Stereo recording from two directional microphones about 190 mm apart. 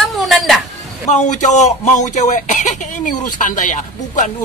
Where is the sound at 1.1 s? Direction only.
40° left (ahead or behind).